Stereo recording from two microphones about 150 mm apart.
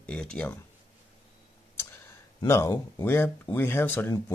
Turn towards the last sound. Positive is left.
turn(degrees=15)  # may be behind; listen again after turning